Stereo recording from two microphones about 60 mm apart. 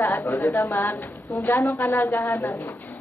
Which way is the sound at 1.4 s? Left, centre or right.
Left.